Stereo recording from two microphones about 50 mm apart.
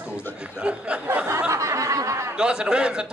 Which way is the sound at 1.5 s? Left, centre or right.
Right.